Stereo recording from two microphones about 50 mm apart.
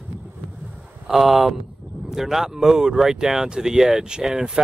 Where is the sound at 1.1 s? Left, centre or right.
Centre.